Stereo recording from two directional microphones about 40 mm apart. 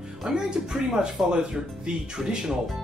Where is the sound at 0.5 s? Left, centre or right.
Centre.